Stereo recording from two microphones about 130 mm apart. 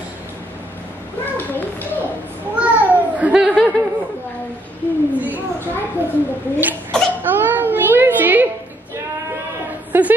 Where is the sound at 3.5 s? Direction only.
10° left (ahead or behind).